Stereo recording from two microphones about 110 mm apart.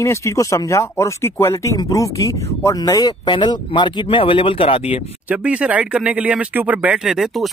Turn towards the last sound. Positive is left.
turn(degrees=0)  # may be behind; listen again after turning